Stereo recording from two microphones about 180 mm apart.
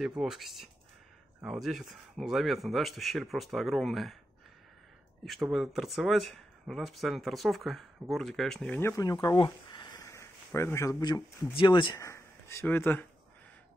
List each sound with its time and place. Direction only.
0.2 s speech: centre (ahead or behind)
5.2 s speech: centre (ahead or behind)